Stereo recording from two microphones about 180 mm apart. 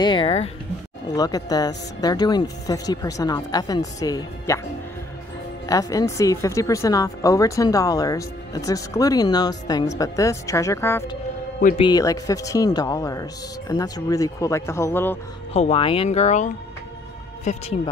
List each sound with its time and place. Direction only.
0.0 s speech: 30° left (ahead or behind)
1.0 s speech: 20° left (ahead or behind)
5.7 s speech: 20° left (ahead or behind)
11.7 s speech: 25° left (ahead or behind)
15.5 s speech: 35° left (ahead or behind)